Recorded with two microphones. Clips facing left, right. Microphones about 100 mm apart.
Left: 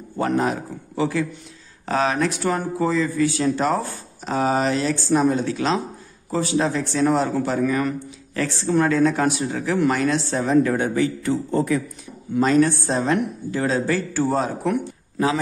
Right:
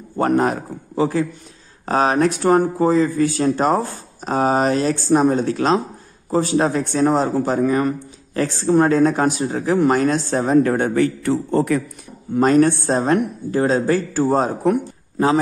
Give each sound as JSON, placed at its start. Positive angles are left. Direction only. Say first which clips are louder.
{"t": 0.2, "sound": "a woman's voice", "louder": "right 4 dB", "side_deg": -50}
{"t": 0.9, "sound": "a man's voice", "louder": "right 4 dB", "side_deg": -35}
{"t": 12.4, "sound": "a woman's voice", "louder": "right 3 dB", "side_deg": -45}